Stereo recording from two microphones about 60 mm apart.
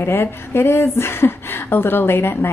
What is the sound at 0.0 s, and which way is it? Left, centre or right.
A woman's voice, left.